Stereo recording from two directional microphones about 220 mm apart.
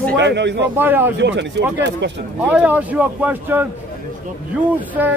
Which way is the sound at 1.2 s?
55° right (ahead or behind).